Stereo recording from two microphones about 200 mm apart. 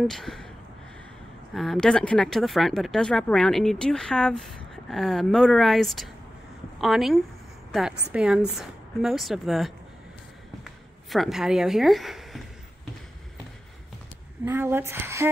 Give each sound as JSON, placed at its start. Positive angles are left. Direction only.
{"t": 0.0, "sound": "speech", "side_deg": 0}
{"t": 1.5, "sound": "speech", "side_deg": 0}
{"t": 14.4, "sound": "a woman's voice", "side_deg": -10}